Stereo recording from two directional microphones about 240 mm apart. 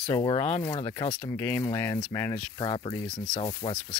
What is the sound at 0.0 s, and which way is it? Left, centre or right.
Speech, left.